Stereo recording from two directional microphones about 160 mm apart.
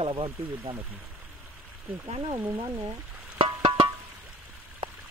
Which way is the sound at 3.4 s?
30° right (ahead or behind).